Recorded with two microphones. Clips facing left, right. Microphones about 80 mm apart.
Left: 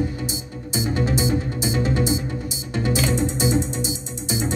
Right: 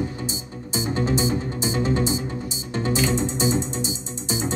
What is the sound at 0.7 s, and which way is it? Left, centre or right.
Music, right.